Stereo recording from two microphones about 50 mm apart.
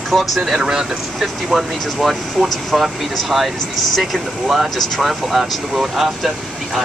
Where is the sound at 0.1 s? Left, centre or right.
Centre.